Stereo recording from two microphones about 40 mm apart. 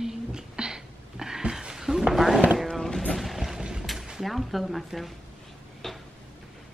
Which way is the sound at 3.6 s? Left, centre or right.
Centre.